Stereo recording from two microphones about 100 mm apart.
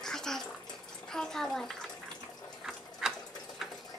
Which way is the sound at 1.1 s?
5° left (ahead or behind).